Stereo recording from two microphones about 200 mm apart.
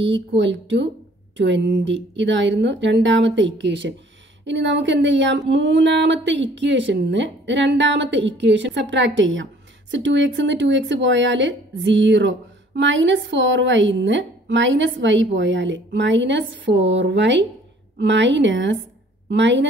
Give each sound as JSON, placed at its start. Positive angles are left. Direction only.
{"t": 0.0, "sound": "a woman's voice", "side_deg": -65}